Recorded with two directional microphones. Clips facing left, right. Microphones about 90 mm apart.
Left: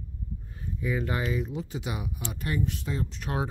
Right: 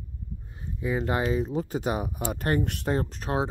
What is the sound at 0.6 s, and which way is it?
Speech, 30° right (ahead or behind).